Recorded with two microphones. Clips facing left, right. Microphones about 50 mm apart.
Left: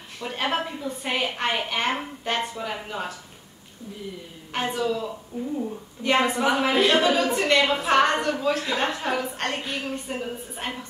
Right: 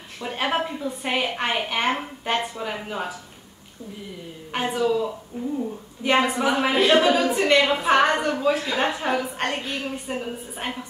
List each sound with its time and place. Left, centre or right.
0.2 s a woman's voice: centre
4.5 s a woman's voice: centre
5.3 s speech: right
5.7 s a woman's voice: centre